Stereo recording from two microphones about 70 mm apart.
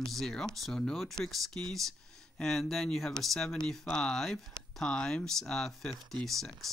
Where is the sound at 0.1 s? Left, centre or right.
Centre.